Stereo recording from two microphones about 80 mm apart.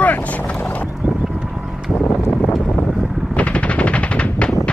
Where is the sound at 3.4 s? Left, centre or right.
Centre.